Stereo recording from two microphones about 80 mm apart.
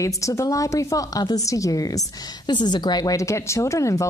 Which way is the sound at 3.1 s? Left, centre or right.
Left.